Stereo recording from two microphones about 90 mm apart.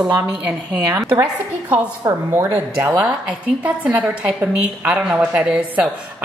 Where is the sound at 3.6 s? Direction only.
15° right (ahead or behind).